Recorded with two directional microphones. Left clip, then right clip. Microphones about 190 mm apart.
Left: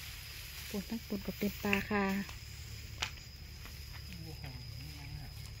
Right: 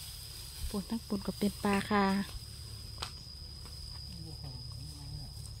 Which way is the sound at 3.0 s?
25° left (ahead or behind).